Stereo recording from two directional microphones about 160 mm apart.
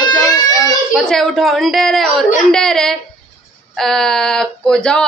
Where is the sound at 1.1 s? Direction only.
Centre (ahead or behind).